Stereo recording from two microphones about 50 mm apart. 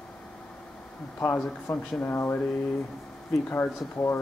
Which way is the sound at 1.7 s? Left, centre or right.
Left.